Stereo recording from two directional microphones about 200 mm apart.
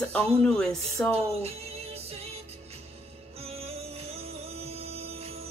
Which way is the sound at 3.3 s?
30° right (ahead or behind).